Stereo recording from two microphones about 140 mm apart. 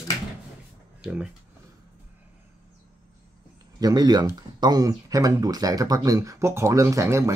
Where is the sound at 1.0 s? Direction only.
5° right (ahead or behind).